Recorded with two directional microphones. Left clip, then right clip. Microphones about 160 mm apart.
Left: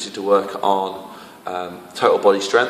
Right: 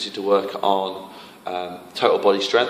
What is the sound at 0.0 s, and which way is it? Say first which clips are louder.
A man's voice: left 2 dB; 15° right (ahead or behind).